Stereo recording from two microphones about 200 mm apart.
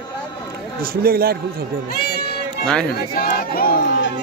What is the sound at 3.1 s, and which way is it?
Speech, 45° left (ahead or behind).